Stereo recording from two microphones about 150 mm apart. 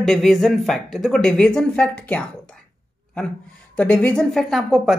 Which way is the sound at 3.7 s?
10° left (ahead or behind).